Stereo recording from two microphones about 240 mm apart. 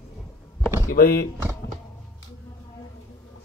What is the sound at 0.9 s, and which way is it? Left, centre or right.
Speech, left.